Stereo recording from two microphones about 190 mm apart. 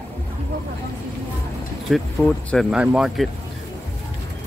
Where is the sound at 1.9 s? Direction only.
Centre (ahead or behind).